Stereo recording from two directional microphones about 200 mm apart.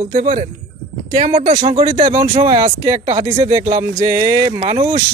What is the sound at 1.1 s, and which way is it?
Speech, 25° right (ahead or behind).